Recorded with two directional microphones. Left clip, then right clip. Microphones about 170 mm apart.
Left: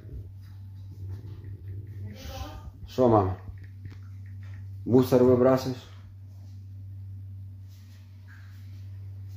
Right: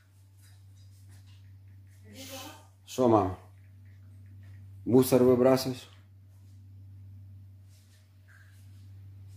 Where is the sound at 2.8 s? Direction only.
15° right (ahead or behind).